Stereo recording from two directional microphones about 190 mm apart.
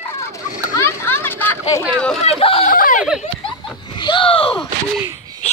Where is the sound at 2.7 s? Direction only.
45° left (ahead or behind).